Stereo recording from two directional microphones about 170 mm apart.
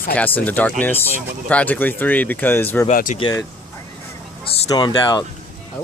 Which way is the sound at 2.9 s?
50° left (ahead or behind).